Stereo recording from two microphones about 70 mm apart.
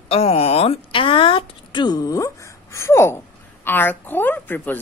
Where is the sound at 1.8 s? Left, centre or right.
Left.